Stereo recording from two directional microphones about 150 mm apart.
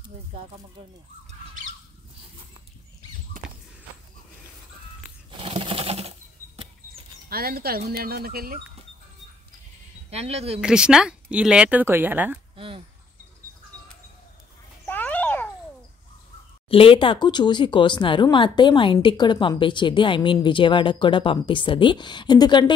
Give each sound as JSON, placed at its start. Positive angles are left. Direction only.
{"t": 5.4, "sound": "sewing machine", "side_deg": -35}
{"t": 7.2, "sound": "speech", "side_deg": -90}
{"t": 10.0, "sound": "speech", "side_deg": -45}
{"t": 10.6, "sound": "speech", "side_deg": -5}
{"t": 12.5, "sound": "a sound", "side_deg": -35}
{"t": 14.9, "sound": "a sound", "side_deg": 10}
{"t": 16.6, "sound": "speech", "side_deg": 40}